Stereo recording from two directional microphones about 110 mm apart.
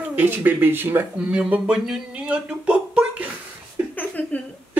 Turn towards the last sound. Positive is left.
turn(degrees=15)  # may be behind; listen again after turning